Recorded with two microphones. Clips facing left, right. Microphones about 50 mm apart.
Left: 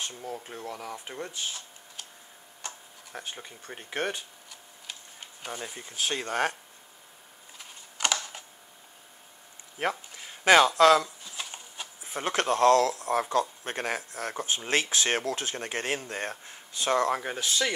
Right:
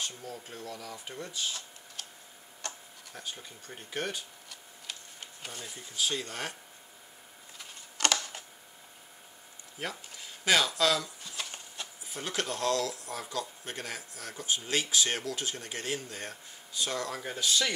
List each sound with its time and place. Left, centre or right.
0.0 s speech: left
3.1 s speech: left
5.8 s speech: left
7.5 s a sound: centre
9.8 s speech: left
11.3 s a sound: centre
12.0 s speech: left
17.2 s speech: left